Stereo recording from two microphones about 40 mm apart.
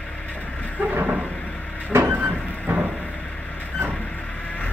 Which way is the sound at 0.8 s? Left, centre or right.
Right.